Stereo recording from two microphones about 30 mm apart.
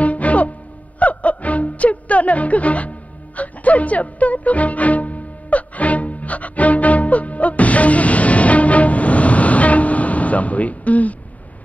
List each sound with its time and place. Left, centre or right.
0.0 s music: left